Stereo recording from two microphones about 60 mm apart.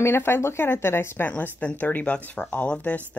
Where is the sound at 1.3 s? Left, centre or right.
Left.